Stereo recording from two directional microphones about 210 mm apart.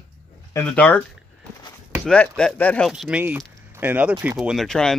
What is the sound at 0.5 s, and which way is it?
Speech, 5° left (ahead or behind).